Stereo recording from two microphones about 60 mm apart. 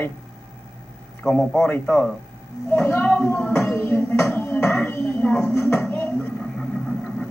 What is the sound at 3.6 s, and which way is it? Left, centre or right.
Music, left.